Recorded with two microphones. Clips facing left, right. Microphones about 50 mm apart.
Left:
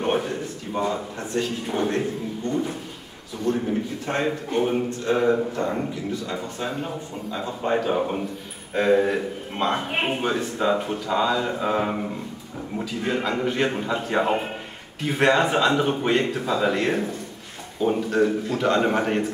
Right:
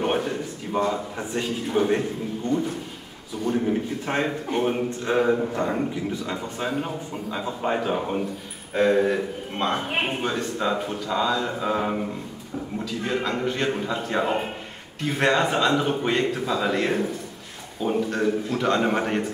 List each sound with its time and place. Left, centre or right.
0.0 s a sound: centre
1.7 s a man's voice: centre
3.5 s speech: centre
5.6 s a man's voice: right
6.2 s a man's voice: centre